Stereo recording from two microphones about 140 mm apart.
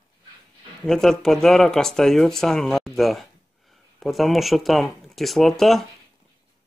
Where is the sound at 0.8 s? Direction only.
5° left (ahead or behind).